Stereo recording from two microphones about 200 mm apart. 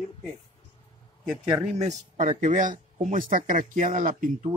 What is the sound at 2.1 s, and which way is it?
Speech, 35° right (ahead or behind).